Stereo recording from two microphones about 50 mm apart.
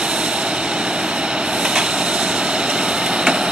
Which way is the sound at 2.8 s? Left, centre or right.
Centre.